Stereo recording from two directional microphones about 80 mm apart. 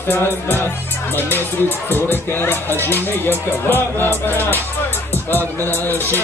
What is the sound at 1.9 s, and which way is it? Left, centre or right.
Speech, left.